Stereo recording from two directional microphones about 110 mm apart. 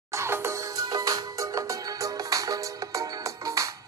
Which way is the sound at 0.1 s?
25° right (ahead or behind).